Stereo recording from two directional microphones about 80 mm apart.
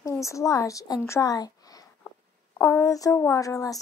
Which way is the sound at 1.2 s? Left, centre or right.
Left.